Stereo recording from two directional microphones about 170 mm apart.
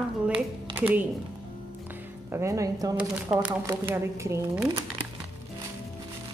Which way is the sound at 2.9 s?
5° right (ahead or behind).